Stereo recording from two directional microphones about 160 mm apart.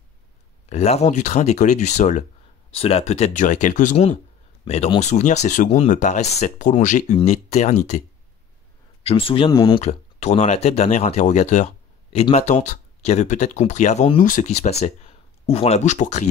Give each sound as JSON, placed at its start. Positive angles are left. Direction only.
{"t": 0.7, "sound": "speech", "side_deg": 40}
{"t": 9.0, "sound": "speech", "side_deg": 35}
{"t": 9.8, "sound": "speech", "side_deg": 45}